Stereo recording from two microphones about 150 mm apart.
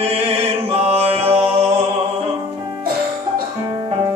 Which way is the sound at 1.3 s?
40° right (ahead or behind).